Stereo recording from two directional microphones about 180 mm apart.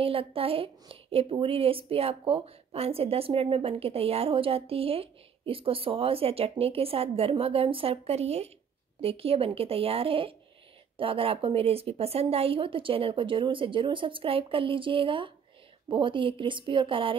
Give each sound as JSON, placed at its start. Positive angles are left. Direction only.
{"t": 0.0, "sound": "speech", "side_deg": -30}